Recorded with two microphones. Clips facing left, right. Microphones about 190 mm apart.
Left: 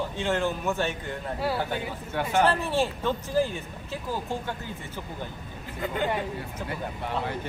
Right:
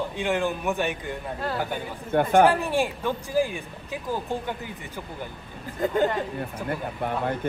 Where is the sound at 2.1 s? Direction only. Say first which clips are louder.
Right 8 dB; 55° right (ahead or behind).